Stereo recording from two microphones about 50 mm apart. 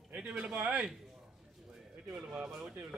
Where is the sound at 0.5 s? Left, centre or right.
Right.